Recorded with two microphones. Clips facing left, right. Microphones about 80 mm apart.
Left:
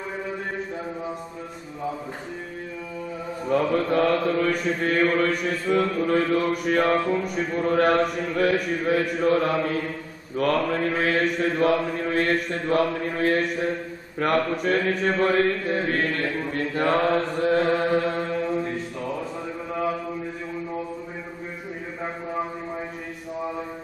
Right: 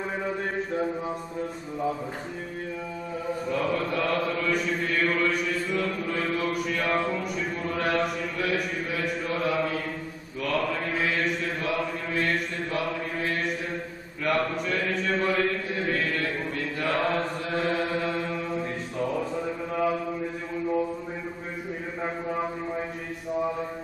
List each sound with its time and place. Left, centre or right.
3.4 s speech: left
5.8 s mantra: left
6.6 s speech: left
10.3 s mantra: left
14.2 s speech: left
16.5 s mantra: left
17.6 s chant: left